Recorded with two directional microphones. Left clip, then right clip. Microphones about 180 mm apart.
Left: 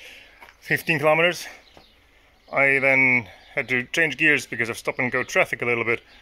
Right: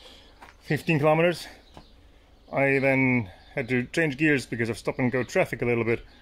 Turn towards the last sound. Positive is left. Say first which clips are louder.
# left 3 dB
turn(degrees=-5)  # may be behind; listen again after turning